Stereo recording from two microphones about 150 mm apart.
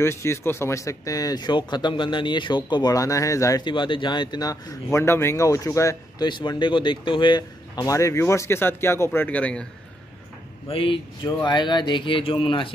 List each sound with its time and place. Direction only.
0.0 s speech: 20° left (ahead or behind)
10.7 s speech: 35° left (ahead or behind)